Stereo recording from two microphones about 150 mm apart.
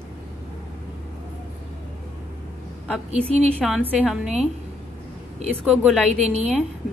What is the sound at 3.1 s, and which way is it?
Speech, 45° right (ahead or behind).